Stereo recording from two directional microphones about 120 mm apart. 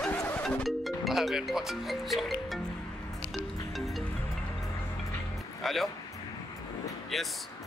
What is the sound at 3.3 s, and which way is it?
Music, centre (ahead or behind).